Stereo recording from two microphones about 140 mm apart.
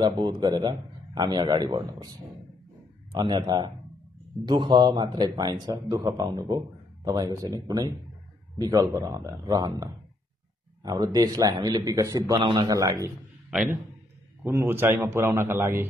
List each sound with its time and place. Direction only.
0.0 s a man's voice: 35° right (ahead or behind)
3.1 s a man's voice: 30° right (ahead or behind)
10.8 s a man's voice: 25° right (ahead or behind)
14.4 s a man's voice: 20° right (ahead or behind)